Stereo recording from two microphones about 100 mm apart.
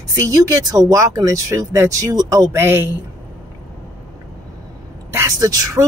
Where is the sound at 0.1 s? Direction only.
35° right (ahead or behind).